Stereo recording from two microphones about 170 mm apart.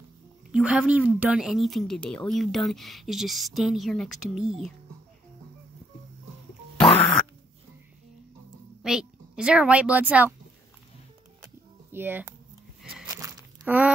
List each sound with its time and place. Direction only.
0.5 s a woman's voice: 5° right (ahead or behind)
6.8 s music: 5° left (ahead or behind)
8.8 s a woman's voice: 5° right (ahead or behind)
11.4 s a sound: 15° right (ahead or behind)
13.1 s crumpling: 20° right (ahead or behind)
13.7 s speech: 10° right (ahead or behind)